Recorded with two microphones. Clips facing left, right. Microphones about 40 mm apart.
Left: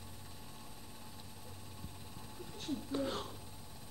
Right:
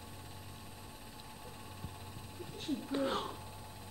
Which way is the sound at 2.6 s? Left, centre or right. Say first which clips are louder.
Right 2 dB; right.